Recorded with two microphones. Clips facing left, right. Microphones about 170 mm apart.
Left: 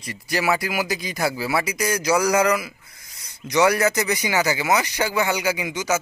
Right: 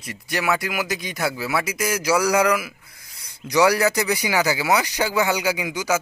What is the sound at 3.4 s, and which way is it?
Speech, 20° left (ahead or behind).